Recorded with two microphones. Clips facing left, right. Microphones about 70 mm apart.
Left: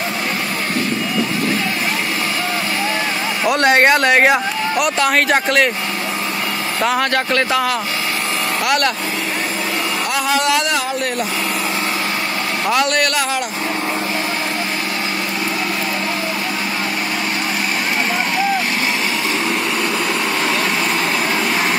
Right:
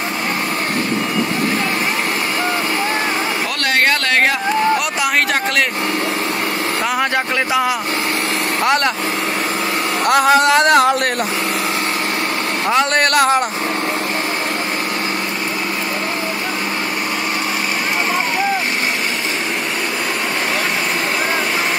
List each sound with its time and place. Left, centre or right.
3.4 s speech: left
5.3 s speech: centre
7.0 s speech: centre
8.6 s speech: right
10.0 s speech: right
12.7 s speech: right
13.1 s speech: right